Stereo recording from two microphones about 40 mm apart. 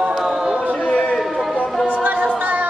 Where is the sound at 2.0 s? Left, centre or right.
Right.